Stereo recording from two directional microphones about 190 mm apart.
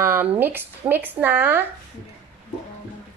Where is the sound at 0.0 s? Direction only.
10° right (ahead or behind).